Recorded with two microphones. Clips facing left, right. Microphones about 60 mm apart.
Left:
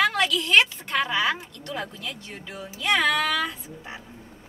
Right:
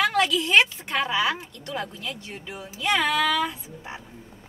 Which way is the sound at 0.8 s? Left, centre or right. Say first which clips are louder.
Even; centre.